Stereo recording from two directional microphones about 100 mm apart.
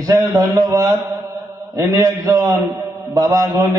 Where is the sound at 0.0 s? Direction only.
35° right (ahead or behind).